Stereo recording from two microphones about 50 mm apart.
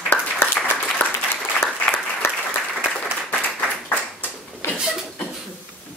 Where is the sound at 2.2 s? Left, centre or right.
Left.